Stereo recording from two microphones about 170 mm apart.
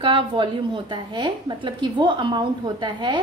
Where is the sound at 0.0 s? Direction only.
30° right (ahead or behind).